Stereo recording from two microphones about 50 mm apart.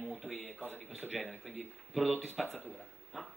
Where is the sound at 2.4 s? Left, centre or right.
Centre.